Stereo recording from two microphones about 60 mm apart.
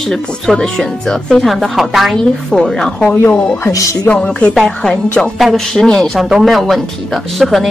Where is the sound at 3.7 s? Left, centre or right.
Left.